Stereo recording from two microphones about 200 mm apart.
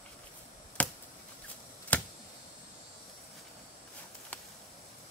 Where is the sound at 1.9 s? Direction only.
5° left (ahead or behind).